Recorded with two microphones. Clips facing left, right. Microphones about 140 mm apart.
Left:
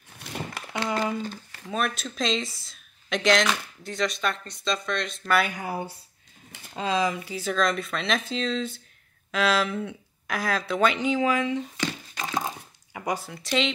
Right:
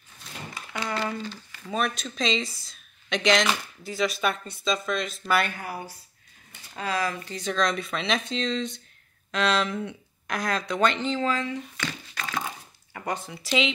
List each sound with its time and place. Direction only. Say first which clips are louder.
0.2 s a sound: left 5 dB; 70° left (ahead or behind)
1.7 s speech: even; centre (ahead or behind)
5.5 s speech: left 4 dB; 20° left (ahead or behind)
7.2 s speech: left 1 dB; 5° left (ahead or behind); by 12.4 s 25° left (ahead or behind)
12.9 s speech: left 2 dB; 10° left (ahead or behind)